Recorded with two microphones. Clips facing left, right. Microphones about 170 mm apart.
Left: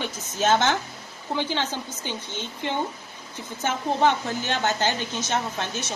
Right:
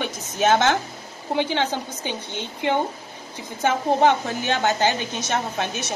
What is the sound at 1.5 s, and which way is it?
Speech, 60° right (ahead or behind).